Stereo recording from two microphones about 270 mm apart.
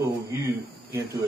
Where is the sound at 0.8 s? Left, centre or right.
Right.